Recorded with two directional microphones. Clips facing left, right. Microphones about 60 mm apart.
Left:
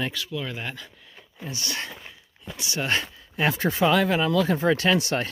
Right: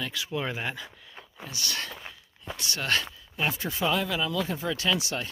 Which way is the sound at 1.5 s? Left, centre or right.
Left.